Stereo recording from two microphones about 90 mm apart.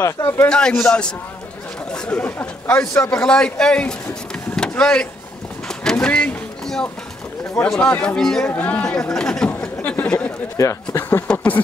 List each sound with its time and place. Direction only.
0.0 s speech: 35° left (ahead or behind)
0.5 s speech: 10° left (ahead or behind)
2.9 s speech: 35° left (ahead or behind)
3.2 s speech: 10° left (ahead or behind)
4.6 s vehicle: 10° left (ahead or behind)
7.6 s speech: 10° left (ahead or behind)
8.5 s speech: 15° left (ahead or behind)
9.8 s a sound: 20° left (ahead or behind)
10.6 s speech: 35° left (ahead or behind)
11.3 s a sound: 20° left (ahead or behind)